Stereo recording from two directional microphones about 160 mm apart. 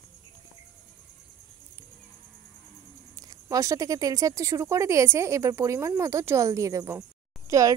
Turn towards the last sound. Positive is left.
turn(degrees=-20)  # may be behind; listen again after turning